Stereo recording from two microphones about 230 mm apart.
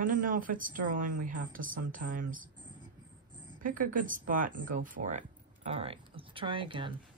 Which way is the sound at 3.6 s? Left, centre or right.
Right.